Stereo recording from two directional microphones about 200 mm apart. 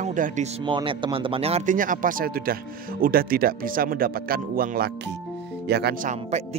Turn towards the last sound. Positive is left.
turn(degrees=-35)  # may be behind; listen again after turning